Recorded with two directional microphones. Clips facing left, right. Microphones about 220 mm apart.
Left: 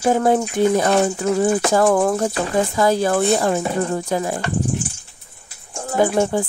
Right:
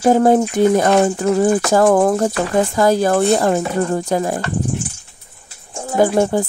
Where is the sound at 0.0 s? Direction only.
40° right (ahead or behind).